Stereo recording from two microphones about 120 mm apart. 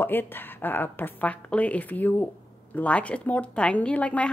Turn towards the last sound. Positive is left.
turn(degrees=10)  # may be behind; listen again after turning